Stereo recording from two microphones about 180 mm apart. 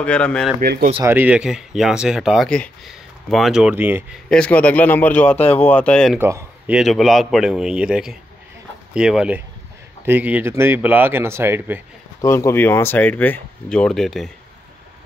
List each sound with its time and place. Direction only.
0.0 s speech: 5° left (ahead or behind)
0.6 s speech: 60° right (ahead or behind)
1.0 s speech: 10° right (ahead or behind)
4.3 s speech: 5° left (ahead or behind)
6.1 s a man's voice: 10° right (ahead or behind)
6.8 s speech: centre (ahead or behind)
12.2 s speech: 15° left (ahead or behind)